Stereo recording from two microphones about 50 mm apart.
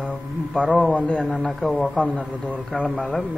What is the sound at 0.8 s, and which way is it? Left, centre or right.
Speech, left.